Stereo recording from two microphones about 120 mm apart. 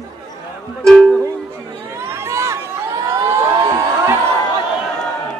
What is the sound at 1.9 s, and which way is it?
Crowd, 20° right (ahead or behind).